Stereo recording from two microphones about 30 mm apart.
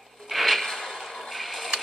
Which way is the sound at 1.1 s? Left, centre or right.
Centre.